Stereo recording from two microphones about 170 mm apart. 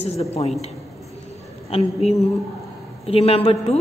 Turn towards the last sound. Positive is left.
turn(degrees=35)  # may be behind; listen again after turning